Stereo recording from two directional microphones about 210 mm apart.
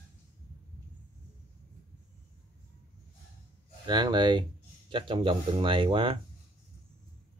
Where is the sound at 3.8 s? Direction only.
20° right (ahead or behind).